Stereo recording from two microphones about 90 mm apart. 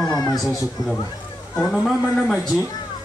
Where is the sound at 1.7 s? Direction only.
Centre (ahead or behind).